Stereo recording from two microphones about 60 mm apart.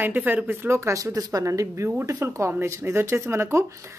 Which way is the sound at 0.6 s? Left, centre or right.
Right.